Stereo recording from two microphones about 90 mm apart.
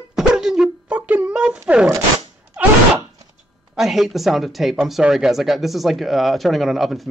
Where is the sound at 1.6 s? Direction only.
10° right (ahead or behind).